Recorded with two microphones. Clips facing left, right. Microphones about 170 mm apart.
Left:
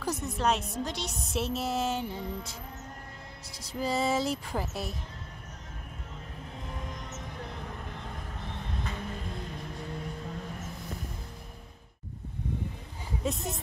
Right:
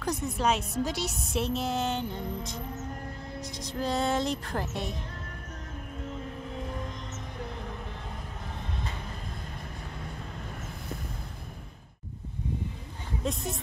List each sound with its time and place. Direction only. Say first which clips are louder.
0.0 s speech: right 1 dB; centre (ahead or behind)
1.4 s speech: right 1 dB; 5° left (ahead or behind)
13.2 s speech: even; 5° left (ahead or behind)